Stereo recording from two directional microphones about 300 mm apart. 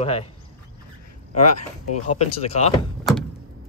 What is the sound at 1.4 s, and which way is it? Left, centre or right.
Speech, left.